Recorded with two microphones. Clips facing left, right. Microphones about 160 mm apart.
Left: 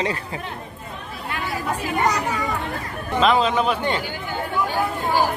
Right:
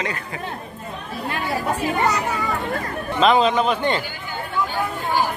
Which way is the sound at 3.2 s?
Centre (ahead or behind).